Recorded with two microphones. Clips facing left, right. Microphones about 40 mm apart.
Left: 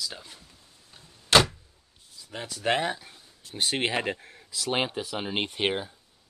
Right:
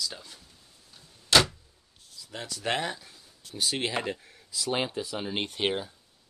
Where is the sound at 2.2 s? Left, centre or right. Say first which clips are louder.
Left 4 dB; left.